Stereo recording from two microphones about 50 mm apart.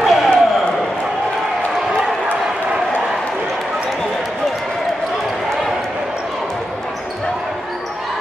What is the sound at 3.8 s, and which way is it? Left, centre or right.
Run, centre.